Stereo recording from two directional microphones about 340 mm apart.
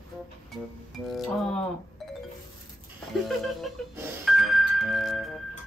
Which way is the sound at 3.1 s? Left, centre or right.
Centre.